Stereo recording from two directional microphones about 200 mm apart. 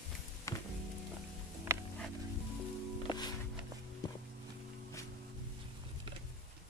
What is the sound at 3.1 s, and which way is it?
Music, 20° left (ahead or behind).